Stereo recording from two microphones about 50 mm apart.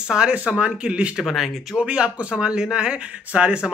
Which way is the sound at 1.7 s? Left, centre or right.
Centre.